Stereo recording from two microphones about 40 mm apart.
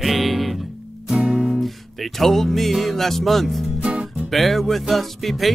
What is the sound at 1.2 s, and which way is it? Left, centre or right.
Music, right.